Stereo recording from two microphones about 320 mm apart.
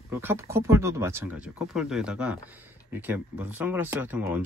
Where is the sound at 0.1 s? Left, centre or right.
Centre.